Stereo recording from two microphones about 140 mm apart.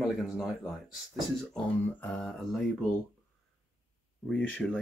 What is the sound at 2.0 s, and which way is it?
Speech, 10° left (ahead or behind).